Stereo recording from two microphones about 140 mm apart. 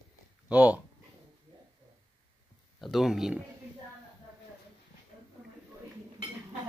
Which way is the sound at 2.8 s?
Centre (ahead or behind).